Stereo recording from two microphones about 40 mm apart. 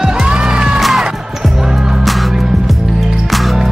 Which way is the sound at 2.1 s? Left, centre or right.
Centre.